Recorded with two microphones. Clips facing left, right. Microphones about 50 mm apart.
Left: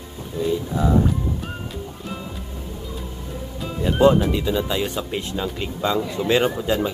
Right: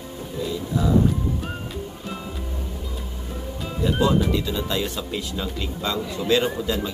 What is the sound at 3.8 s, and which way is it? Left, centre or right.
Speech, left.